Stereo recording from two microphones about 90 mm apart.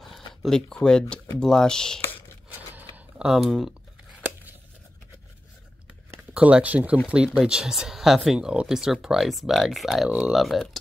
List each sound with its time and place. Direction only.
0.3 s speech: 5° left (ahead or behind)
3.2 s speech: 5° right (ahead or behind)
6.3 s speech: 15° right (ahead or behind)
10.0 s speech: 15° right (ahead or behind)
10.3 s speech: centre (ahead or behind)